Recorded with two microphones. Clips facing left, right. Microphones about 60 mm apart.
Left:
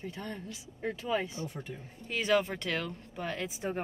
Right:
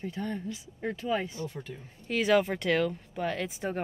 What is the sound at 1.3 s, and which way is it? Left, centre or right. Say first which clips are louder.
Speech: right 2 dB; left.